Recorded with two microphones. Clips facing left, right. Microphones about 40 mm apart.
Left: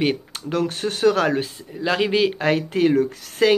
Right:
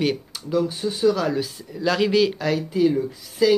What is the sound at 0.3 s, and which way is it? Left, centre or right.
Speech, left.